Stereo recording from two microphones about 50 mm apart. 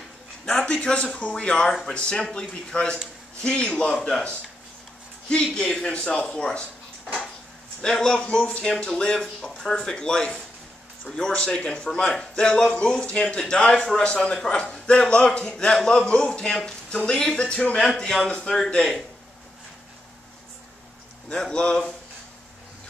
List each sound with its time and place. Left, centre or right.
0.5 s a sound: centre
0.7 s a man's voice: centre
5.3 s a man's voice: centre
8.1 s a man's voice: centre
17.7 s a man's voice: centre
21.4 s a man's voice: centre